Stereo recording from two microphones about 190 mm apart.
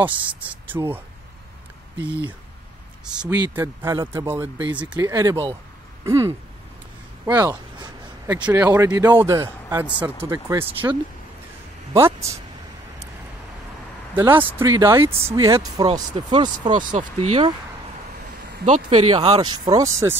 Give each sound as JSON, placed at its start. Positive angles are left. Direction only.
{"t": 0.0, "sound": "speech", "side_deg": -10}
{"t": 11.9, "sound": "speech", "side_deg": -15}
{"t": 14.1, "sound": "speech", "side_deg": -10}
{"t": 16.7, "sound": "speech", "side_deg": -40}
{"t": 18.7, "sound": "speech", "side_deg": -35}
{"t": 19.3, "sound": "speech", "side_deg": -20}